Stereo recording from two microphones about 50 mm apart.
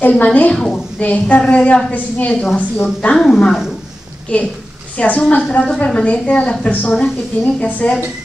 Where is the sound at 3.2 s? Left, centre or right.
Centre.